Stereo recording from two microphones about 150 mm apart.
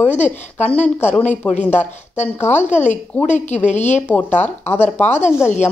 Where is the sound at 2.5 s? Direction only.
50° left (ahead or behind).